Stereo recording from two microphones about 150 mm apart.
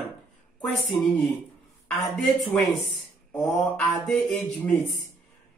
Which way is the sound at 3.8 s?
Centre (ahead or behind).